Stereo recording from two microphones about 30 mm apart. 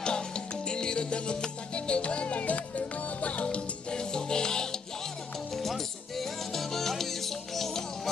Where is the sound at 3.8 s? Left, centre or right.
Left.